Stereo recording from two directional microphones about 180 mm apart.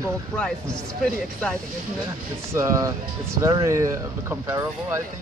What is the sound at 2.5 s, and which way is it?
Speech, 15° right (ahead or behind).